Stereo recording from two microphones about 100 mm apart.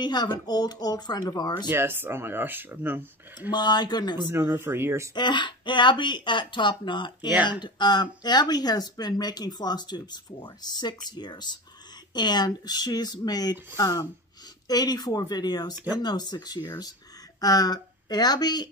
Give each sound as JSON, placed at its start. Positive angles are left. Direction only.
{"t": 0.0, "sound": "speech", "side_deg": 45}
{"t": 1.7, "sound": "speech", "side_deg": -20}
{"t": 3.5, "sound": "speech", "side_deg": 45}
{"t": 4.3, "sound": "speech", "side_deg": -25}
{"t": 5.1, "sound": "speech", "side_deg": 50}